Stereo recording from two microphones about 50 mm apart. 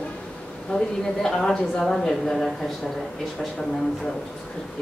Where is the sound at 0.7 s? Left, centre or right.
Left.